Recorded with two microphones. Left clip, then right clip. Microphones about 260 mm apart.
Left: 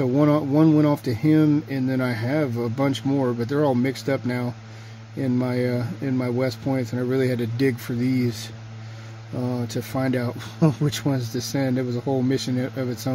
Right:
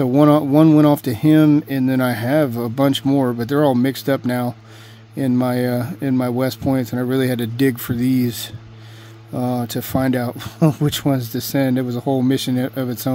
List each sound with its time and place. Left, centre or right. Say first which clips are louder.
0.0 s speech: right 6 dB; right